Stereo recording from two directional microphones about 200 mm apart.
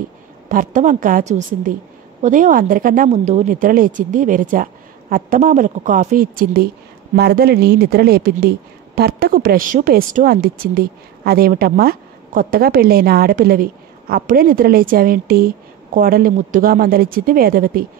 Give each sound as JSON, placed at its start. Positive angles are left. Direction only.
{"t": 0.5, "sound": "speech", "side_deg": -40}